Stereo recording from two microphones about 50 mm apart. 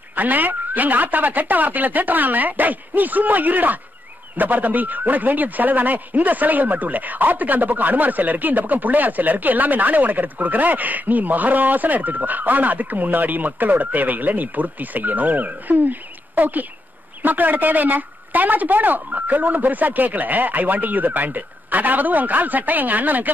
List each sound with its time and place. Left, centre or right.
0.1 s speech: right